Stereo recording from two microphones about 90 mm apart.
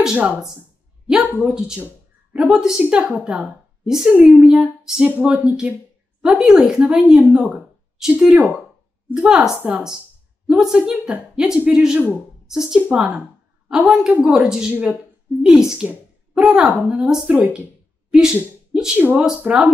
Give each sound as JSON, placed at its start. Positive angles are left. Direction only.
{"t": 0.0, "sound": "a woman's voice", "side_deg": -10}
{"t": 1.0, "sound": "a sound", "side_deg": -10}
{"t": 1.4, "sound": "a woman's voice", "side_deg": -5}
{"t": 8.1, "sound": "a woman's voice", "side_deg": -5}
{"t": 12.8, "sound": "a woman's voice", "side_deg": -20}
{"t": 15.4, "sound": "speech", "side_deg": -5}
{"t": 15.9, "sound": "a woman's voice", "side_deg": -15}
{"t": 18.1, "sound": "a sound", "side_deg": -5}
{"t": 18.9, "sound": "a woman's voice", "side_deg": -20}